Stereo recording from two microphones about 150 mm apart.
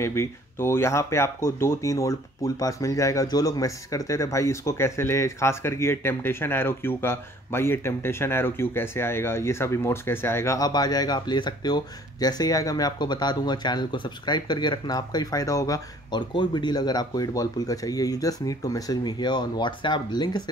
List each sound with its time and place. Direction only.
0.0 s speech: 20° left (ahead or behind)